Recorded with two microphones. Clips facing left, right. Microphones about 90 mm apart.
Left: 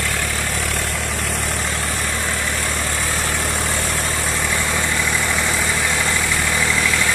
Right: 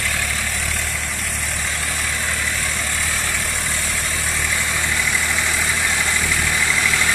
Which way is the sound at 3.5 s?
40° left (ahead or behind).